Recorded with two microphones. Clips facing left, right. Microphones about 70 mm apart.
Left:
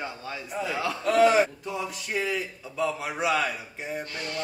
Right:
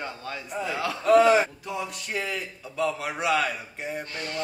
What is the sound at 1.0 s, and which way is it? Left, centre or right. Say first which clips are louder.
Speech: right 3 dB; right.